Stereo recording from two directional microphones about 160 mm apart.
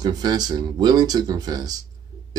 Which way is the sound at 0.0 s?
25° right (ahead or behind).